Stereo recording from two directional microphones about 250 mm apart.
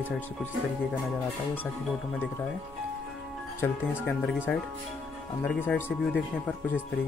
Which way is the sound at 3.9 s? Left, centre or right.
Centre.